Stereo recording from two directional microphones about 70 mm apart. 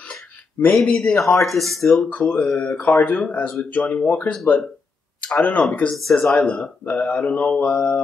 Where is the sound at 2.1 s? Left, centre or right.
Centre.